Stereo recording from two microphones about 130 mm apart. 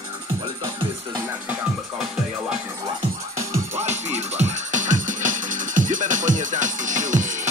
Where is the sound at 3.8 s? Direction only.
60° right (ahead or behind).